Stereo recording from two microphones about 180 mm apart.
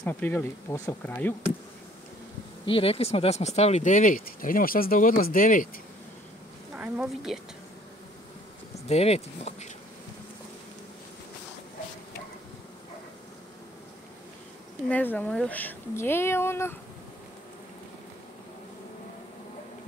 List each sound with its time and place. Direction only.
0.0 s speech: 10° left (ahead or behind)
2.6 s speech: 30° left (ahead or behind); by 5.7 s 50° left (ahead or behind)
6.8 s a woman's voice: 5° right (ahead or behind)
8.8 s speech: 35° left (ahead or behind)
14.9 s speech: 10° left (ahead or behind)